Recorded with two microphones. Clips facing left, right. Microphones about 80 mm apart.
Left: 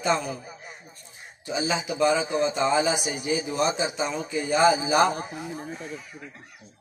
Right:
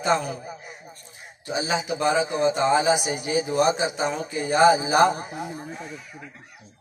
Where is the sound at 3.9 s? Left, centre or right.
Right.